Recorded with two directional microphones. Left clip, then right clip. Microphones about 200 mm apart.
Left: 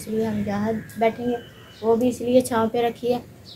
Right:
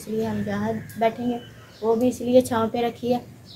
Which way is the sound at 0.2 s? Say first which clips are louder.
Left 2 dB; 10° left (ahead or behind).